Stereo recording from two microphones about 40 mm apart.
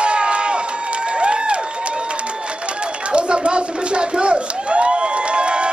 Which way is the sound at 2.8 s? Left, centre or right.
Right.